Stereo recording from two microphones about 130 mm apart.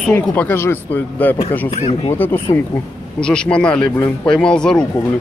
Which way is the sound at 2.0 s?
15° left (ahead or behind).